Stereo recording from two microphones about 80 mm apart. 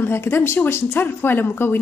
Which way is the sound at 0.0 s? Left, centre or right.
Left.